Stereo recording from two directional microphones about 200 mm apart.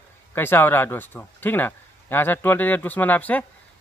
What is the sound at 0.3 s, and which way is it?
Speech, 10° left (ahead or behind).